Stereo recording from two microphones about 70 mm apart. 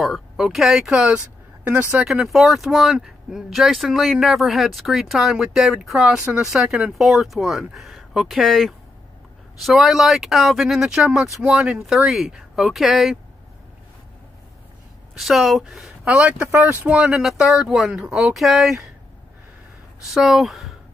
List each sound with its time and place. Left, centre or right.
0.0 s speech: centre
2.0 s speech: centre
15.1 s speech: centre
16.2 s speech: centre
20.1 s speech: centre